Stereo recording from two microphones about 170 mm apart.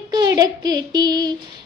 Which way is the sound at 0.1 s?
20° right (ahead or behind).